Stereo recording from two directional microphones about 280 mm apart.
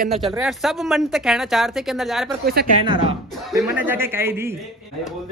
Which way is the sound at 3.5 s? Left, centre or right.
Centre.